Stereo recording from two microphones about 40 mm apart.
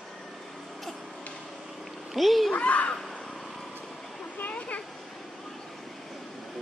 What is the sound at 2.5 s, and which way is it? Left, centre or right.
Speech, left.